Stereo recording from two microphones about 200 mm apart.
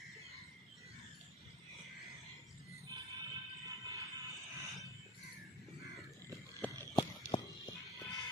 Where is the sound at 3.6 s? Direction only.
15° right (ahead or behind).